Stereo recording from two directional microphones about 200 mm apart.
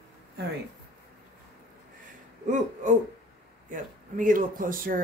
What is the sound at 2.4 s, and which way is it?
Speech, 40° right (ahead or behind).